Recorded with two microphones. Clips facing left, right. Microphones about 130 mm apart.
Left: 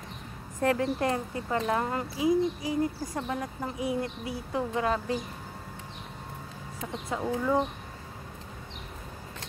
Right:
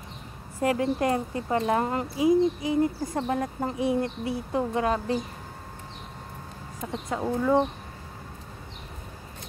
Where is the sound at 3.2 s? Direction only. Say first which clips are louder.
Right 5 dB; 40° right (ahead or behind); by 5.0 s 20° right (ahead or behind).